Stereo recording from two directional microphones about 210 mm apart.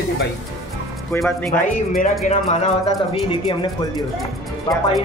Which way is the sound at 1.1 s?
5° left (ahead or behind).